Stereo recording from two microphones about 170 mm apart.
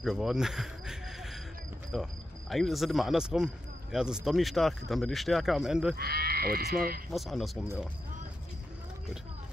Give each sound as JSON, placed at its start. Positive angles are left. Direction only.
{"t": 0.0, "sound": "cricket", "side_deg": 0}
{"t": 1.9, "sound": "speech", "side_deg": 0}
{"t": 5.9, "sound": "speech", "side_deg": -65}
{"t": 7.1, "sound": "speech", "side_deg": 0}